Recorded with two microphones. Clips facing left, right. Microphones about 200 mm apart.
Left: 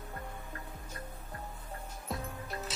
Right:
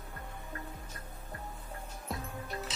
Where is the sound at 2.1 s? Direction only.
Centre (ahead or behind).